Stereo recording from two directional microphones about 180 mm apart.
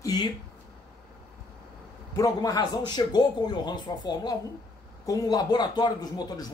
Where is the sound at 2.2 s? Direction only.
20° left (ahead or behind).